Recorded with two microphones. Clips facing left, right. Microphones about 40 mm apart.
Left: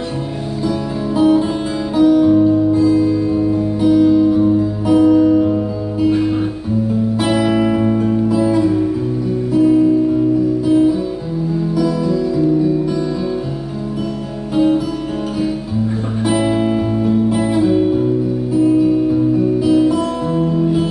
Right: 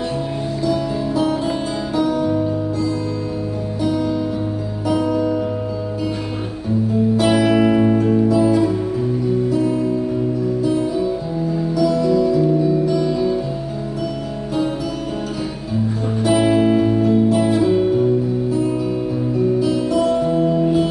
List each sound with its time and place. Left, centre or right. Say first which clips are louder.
1.1 s music: left 8 dB; centre
7.2 s music: even; centre
7.6 s music: even; centre
10.6 s music: left 4 dB; left
14.5 s music: left 8 dB; centre
16.3 s music: right 1 dB; centre
19.6 s music: left 5 dB; centre